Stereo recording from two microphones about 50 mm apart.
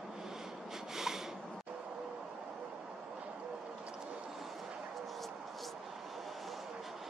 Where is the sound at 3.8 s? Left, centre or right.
Right.